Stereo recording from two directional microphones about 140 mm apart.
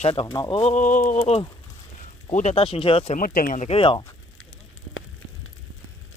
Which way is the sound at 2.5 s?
40° left (ahead or behind).